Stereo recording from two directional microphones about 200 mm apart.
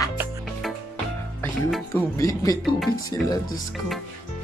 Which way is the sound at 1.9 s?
15° left (ahead or behind).